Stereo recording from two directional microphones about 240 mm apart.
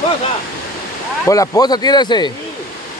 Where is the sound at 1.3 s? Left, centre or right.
Centre.